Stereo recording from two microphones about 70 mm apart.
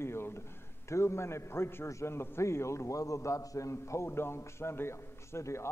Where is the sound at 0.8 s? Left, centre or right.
Left.